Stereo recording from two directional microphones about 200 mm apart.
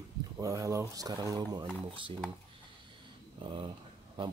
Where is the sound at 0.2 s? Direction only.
15° right (ahead or behind).